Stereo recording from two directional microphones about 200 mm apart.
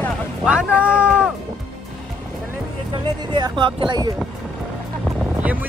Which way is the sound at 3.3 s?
25° right (ahead or behind).